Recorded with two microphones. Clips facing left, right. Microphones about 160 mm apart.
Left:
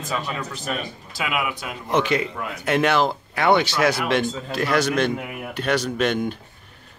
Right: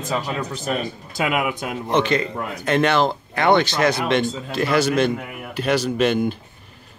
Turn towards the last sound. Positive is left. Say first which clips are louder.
# right 3 dB
turn(degrees=-5)  # may be behind; listen again after turning